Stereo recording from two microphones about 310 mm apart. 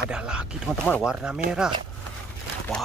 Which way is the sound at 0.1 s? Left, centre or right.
Centre.